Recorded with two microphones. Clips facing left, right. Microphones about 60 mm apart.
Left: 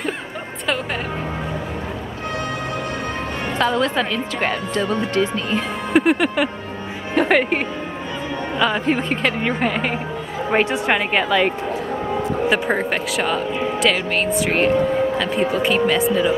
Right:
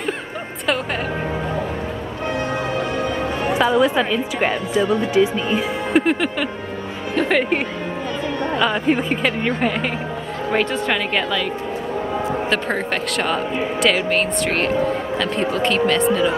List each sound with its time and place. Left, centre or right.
3.5 s speech: centre
5.9 s a man's voice: centre
10.9 s a woman's voice: left
12.4 s a man's voice: centre